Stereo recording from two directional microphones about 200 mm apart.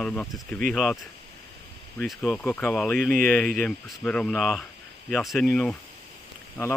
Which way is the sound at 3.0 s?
45° right (ahead or behind).